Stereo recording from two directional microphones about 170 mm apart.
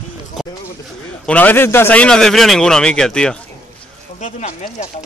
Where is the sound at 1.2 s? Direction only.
10° left (ahead or behind).